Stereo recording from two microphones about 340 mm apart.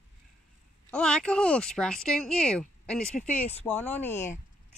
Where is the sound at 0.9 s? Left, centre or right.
Centre.